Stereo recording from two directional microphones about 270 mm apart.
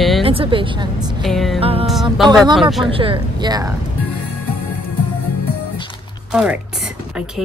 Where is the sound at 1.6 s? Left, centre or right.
Right.